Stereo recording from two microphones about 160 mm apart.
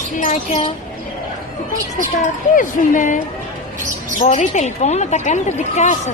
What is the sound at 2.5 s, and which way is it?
Speech, 55° left (ahead or behind).